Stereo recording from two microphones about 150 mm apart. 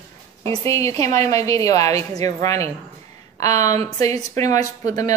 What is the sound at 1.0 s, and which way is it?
A woman's voice, 20° left (ahead or behind).